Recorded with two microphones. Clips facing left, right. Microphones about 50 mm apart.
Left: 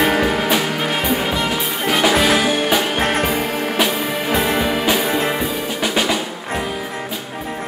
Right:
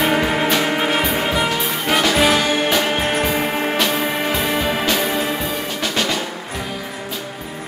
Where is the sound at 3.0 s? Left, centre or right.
Left.